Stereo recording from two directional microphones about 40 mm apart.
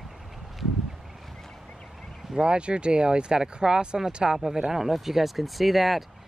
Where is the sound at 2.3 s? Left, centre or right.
Right.